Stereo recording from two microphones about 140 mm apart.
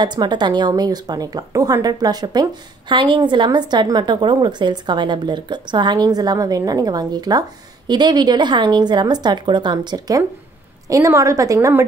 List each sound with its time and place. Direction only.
0.0 s a woman's voice: 30° right (ahead or behind)